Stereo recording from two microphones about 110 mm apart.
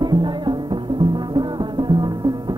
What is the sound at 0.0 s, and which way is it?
Music, 40° right (ahead or behind).